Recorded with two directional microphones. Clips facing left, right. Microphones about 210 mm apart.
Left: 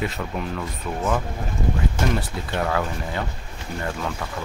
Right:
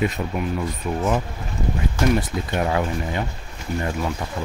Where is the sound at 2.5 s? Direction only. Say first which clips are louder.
Right 1 dB; 20° right (ahead or behind).